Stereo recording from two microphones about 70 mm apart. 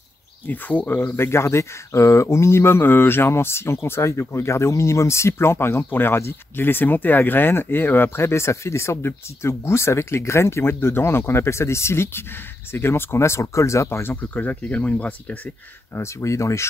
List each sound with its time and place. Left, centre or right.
0.5 s speech: left
1.0 s speech: left; by 15.5 s centre
15.9 s speech: left